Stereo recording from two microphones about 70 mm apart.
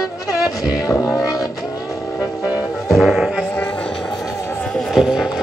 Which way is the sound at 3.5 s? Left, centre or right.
Centre.